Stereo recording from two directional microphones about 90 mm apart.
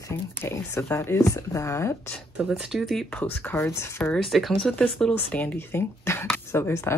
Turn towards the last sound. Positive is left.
turn(degrees=30)  # may be behind; listen again after turning